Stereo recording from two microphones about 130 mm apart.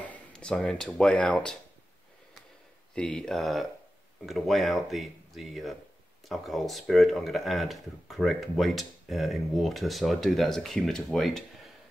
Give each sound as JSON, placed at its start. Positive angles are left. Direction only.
{"t": 0.0, "sound": "speech", "side_deg": 10}
{"t": 2.9, "sound": "speech", "side_deg": 5}